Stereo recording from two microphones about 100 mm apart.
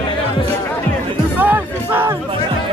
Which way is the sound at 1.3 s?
20° right (ahead or behind).